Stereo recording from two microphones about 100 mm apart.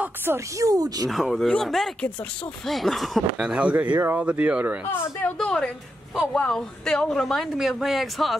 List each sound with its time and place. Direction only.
0.0 s a sound: 20° right (ahead or behind)
0.6 s speech: 35° right (ahead or behind)
1.0 s speech: centre (ahead or behind)
3.7 s speech: 20° right (ahead or behind)
4.8 s a woman's voice: 20° left (ahead or behind)
5.4 s a woman's voice: 5° left (ahead or behind)